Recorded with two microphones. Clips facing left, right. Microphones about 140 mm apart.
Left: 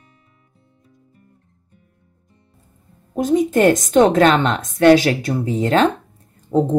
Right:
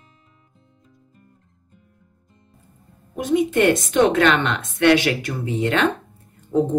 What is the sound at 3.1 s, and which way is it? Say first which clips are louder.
A woman's voice: left 3 dB; 40° left (ahead or behind).